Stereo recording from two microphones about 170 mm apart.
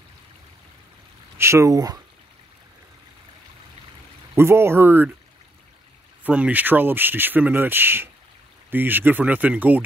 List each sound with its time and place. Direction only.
1.4 s speech: 15° right (ahead or behind)
4.4 s speech: 15° right (ahead or behind)
6.2 s speech: 10° right (ahead or behind)